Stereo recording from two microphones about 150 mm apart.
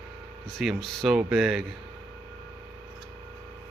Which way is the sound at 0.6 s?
Centre (ahead or behind).